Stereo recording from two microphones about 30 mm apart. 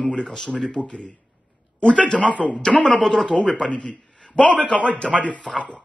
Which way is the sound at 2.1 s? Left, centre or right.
Left.